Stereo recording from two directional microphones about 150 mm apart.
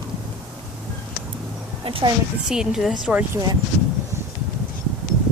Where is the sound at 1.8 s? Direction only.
35° right (ahead or behind).